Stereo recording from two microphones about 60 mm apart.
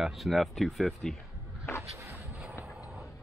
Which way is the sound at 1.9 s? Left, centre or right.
Right.